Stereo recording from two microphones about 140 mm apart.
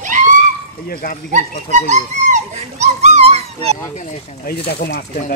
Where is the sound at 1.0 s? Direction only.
90° left.